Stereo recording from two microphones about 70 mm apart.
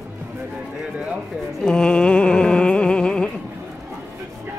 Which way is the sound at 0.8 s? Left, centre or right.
Centre.